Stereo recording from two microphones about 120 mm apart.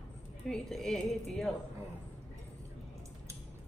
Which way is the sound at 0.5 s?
Centre (ahead or behind).